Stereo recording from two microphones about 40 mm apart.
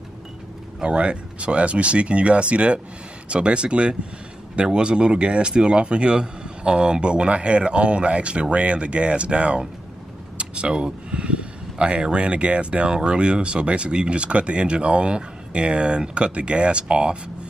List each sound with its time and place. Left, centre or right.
0.8 s speech: right